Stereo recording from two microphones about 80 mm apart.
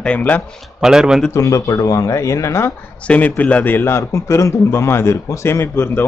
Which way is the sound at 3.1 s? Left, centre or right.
Centre.